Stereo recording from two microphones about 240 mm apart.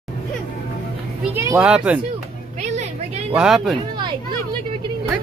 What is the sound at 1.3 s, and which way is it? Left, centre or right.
Speech, centre.